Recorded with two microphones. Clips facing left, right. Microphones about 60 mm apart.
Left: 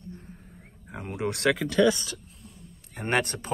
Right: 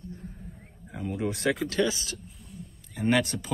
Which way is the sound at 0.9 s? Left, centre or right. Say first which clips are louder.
Even; left.